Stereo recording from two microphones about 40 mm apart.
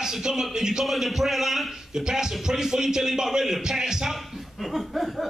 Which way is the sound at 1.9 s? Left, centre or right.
Centre.